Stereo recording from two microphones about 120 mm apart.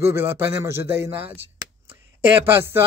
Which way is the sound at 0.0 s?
20° right (ahead or behind).